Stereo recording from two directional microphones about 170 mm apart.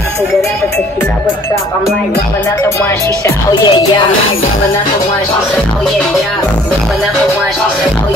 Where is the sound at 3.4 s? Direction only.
25° left (ahead or behind).